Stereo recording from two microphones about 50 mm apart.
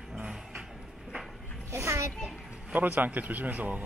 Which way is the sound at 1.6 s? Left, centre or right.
Right.